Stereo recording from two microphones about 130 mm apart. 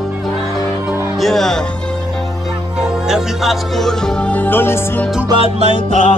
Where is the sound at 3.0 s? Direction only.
Centre (ahead or behind).